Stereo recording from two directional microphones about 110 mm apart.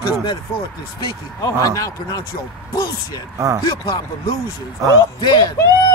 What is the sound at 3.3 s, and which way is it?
Speech, 30° right (ahead or behind).